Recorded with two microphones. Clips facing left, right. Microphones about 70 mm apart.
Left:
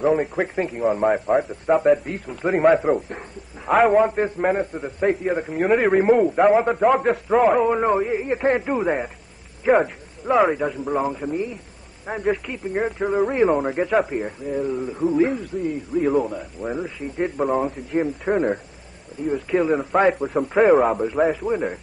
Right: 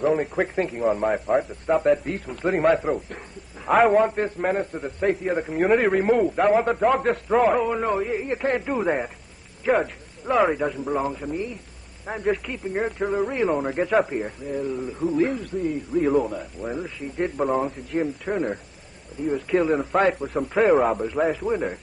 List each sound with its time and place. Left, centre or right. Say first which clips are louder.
0.0 s speech: left 2 dB; centre
2.9 s a man's voice: left 5 dB; centre
3.6 s a man's voice: left 1 dB; centre
7.6 s a man's voice: left 4 dB; centre
8.7 s a man's voice: left 1 dB; centre